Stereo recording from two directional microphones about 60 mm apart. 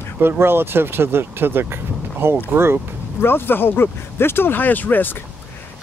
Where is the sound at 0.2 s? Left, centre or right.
Right.